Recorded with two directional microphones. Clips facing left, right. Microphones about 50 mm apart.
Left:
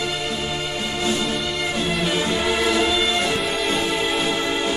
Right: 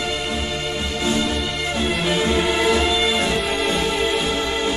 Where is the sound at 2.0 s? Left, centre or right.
Centre.